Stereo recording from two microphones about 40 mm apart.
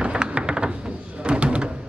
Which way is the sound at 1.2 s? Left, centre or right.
Right.